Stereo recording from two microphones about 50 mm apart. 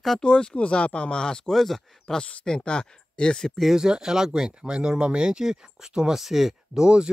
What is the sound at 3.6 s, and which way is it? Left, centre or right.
Speech, centre.